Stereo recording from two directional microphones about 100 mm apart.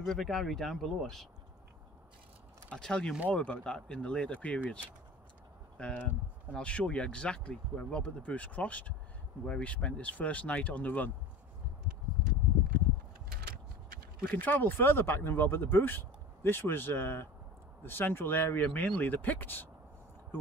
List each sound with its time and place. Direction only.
0.0 s speech: centre (ahead or behind)
2.7 s speech: 10° left (ahead or behind)
5.8 s speech: 10° left (ahead or behind)
14.3 s speech: 20° left (ahead or behind)